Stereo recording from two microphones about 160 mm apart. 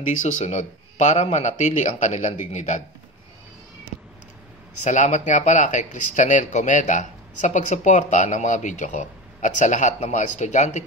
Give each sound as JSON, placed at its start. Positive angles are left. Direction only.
{"t": 0.0, "sound": "speech", "side_deg": 50}
{"t": 4.8, "sound": "speech", "side_deg": 50}